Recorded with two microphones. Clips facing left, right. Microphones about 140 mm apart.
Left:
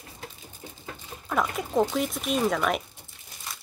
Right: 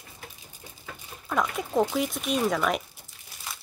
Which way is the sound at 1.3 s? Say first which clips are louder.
Even; centre (ahead or behind).